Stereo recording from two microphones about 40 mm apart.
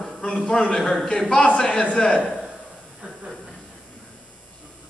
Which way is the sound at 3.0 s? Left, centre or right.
Right.